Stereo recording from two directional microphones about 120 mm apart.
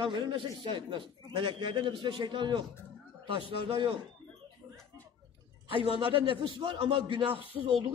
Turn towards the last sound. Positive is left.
turn(degrees=-40)  # may be behind; listen again after turning